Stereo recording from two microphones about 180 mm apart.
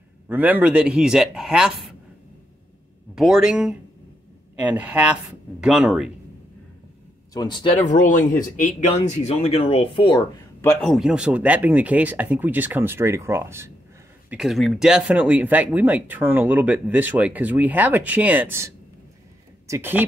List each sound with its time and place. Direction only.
0.3 s speech: 10° right (ahead or behind)
3.2 s speech: 5° right (ahead or behind)
7.3 s speech: 25° left (ahead or behind)
7.8 s speech: 45° left (ahead or behind); by 10.4 s 25° left (ahead or behind)
10.6 s speech: 10° left (ahead or behind); by 13.7 s 15° right (ahead or behind)
14.3 s speech: centre (ahead or behind)
19.7 s speech: 10° right (ahead or behind)